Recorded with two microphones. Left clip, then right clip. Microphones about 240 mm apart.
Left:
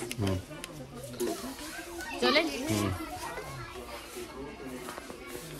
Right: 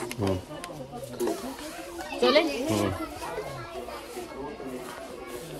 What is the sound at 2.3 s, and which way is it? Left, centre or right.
Speech, centre.